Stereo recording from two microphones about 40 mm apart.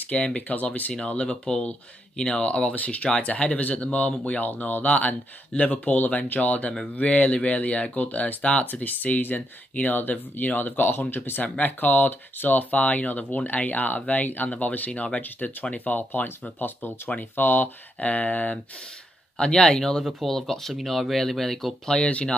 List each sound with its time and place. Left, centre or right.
0.1 s speech: left
0.9 s speech: left
8.4 s speech: left
8.7 s speech: left
11.4 s speech: left
16.0 s speech: left
19.3 s speech: left
19.8 s speech: centre